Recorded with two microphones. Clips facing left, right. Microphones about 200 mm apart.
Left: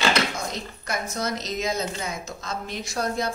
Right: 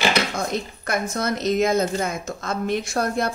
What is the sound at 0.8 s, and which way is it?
A woman's voice, 55° right (ahead or behind).